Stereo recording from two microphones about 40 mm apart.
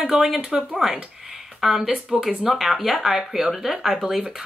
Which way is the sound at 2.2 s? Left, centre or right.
Centre.